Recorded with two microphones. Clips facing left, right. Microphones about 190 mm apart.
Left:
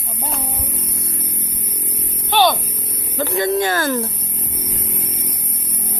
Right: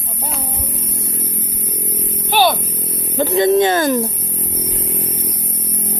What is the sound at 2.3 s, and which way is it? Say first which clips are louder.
Speech: right 1 dB; 10° right (ahead or behind).